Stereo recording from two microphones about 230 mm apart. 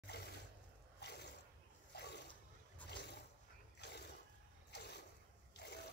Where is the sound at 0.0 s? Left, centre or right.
Left.